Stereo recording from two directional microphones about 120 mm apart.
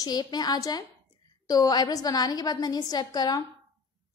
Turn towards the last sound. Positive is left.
turn(degrees=35)  # may be behind; listen again after turning